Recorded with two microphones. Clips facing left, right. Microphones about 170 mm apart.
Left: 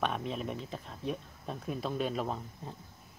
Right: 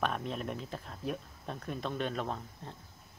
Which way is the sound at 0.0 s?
Centre (ahead or behind).